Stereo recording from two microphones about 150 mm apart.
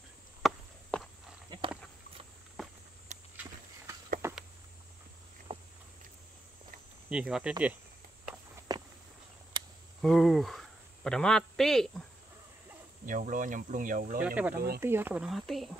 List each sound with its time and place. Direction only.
0.4 s chop: centre (ahead or behind)
1.5 s a sound: 30° right (ahead or behind)
3.1 s walk: 50° right (ahead or behind)
4.2 s a sound: 15° right (ahead or behind)
5.5 s a sound: 40° right (ahead or behind)
7.1 s speech: 5° right (ahead or behind)
8.5 s walk: 25° right (ahead or behind)
10.0 s speech: centre (ahead or behind)
13.0 s speech: 60° right (ahead or behind)
14.2 s speech: 10° right (ahead or behind)
15.2 s speech: centre (ahead or behind)